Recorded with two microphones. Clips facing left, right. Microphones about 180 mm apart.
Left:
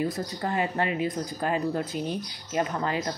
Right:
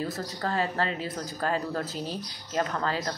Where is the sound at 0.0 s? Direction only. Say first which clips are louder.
Left 3 dB; 15° left (ahead or behind).